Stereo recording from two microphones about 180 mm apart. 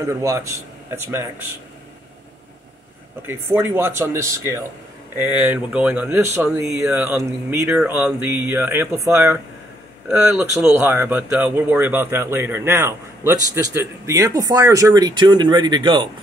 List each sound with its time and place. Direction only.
0.0 s speech: 15° right (ahead or behind)
3.2 s speech: 10° right (ahead or behind)
10.0 s speech: 5° right (ahead or behind); by 16.1 s 25° right (ahead or behind)